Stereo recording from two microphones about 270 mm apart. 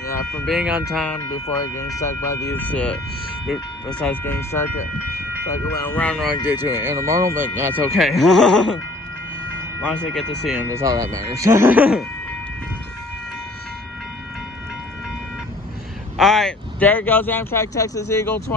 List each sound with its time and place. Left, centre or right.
0.0 s music: centre
0.5 s speech: centre
4.0 s speech: centre
9.8 s speech: centre
16.2 s speech: centre